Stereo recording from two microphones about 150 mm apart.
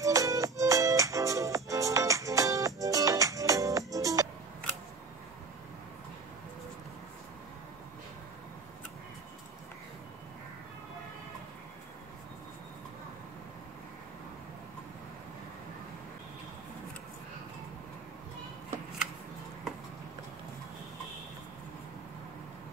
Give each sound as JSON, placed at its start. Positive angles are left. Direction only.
{"t": 0.0, "sound": "music", "side_deg": -20}